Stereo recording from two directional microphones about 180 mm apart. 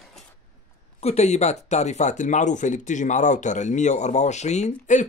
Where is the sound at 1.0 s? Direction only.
35° left (ahead or behind).